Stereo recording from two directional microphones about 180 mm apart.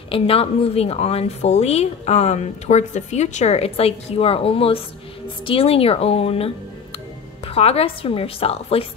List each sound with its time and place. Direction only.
0.1 s a woman's voice: 30° left (ahead or behind)